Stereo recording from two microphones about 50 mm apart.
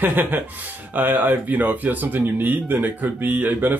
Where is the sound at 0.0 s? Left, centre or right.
Right.